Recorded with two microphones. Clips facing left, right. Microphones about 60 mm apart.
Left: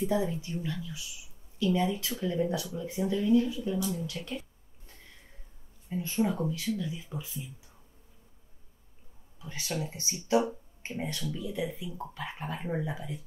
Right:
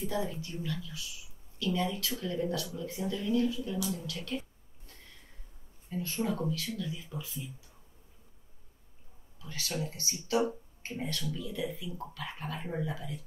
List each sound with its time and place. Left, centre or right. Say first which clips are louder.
0.0 s speech: left 5 dB; left
5.9 s speech: left 4 dB; left
9.4 s speech: left 2 dB; left